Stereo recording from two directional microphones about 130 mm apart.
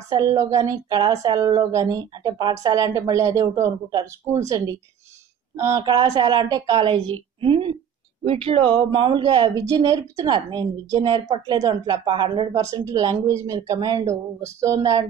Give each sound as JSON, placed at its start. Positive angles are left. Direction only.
{"t": 0.1, "sound": "a woman's voice", "side_deg": -30}
{"t": 6.9, "sound": "a woman's voice", "side_deg": -45}
{"t": 12.5, "sound": "speech", "side_deg": -25}